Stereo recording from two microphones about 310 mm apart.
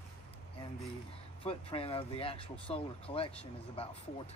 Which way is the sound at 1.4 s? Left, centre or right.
Centre.